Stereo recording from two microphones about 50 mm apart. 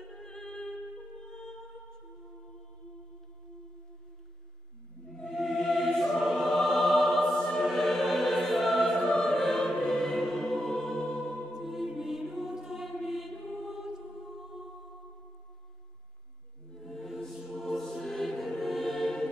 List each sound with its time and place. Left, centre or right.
0.1 s music: centre
5.2 s music: centre
8.9 s choir: centre
11.5 s music: centre
16.7 s music: centre
17.5 s choir: centre